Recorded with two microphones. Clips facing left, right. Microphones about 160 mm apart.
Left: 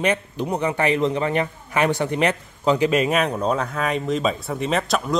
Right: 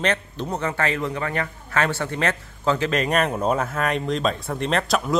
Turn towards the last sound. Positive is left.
turn(degrees=0)  # may be behind; listen again after turning